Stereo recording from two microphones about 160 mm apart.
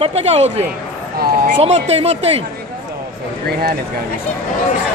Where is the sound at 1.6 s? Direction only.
40° right (ahead or behind).